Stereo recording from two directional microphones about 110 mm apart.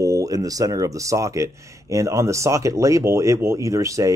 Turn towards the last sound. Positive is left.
turn(degrees=-30)  # may be behind; listen again after turning